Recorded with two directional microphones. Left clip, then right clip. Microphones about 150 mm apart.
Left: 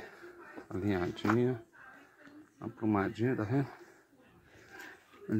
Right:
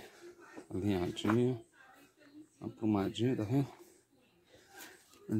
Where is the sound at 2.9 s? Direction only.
15° right (ahead or behind).